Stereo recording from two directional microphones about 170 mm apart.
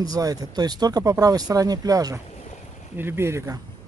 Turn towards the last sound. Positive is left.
turn(degrees=-15)  # may be behind; listen again after turning